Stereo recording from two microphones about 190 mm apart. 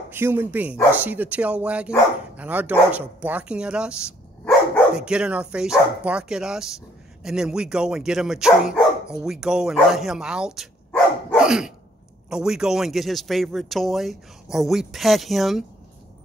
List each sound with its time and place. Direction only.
0.1 s a man's voice: 10° right (ahead or behind)
11.3 s dog: 5° right (ahead or behind)
12.3 s a man's voice: 5° right (ahead or behind)